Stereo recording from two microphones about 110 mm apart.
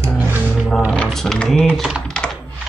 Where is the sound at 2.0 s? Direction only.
5° left (ahead or behind).